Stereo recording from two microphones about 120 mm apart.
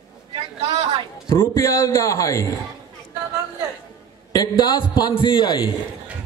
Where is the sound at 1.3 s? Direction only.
20° left (ahead or behind).